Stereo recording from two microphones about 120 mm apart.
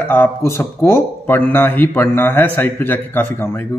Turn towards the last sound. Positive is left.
turn(degrees=15)  # may be behind; listen again after turning